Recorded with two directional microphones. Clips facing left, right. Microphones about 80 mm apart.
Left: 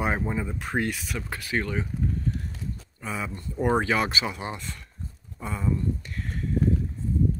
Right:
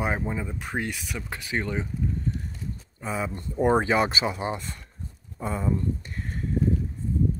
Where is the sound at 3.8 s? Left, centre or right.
Right.